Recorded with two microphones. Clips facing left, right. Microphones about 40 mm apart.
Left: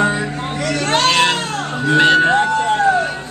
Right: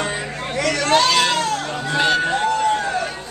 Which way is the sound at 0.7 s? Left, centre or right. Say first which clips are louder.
Left 2 dB; left.